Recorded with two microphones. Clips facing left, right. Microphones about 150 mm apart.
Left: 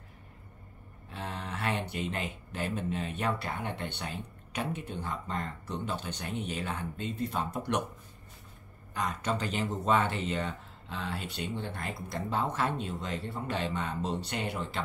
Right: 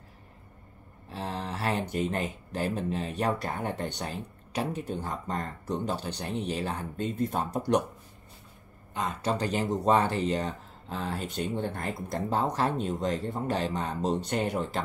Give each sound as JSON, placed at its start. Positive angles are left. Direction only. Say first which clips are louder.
{"t": 1.0, "sound": "speech", "louder": "right 4 dB", "side_deg": -35}
{"t": 8.9, "sound": "speech", "louder": "right 2 dB", "side_deg": -25}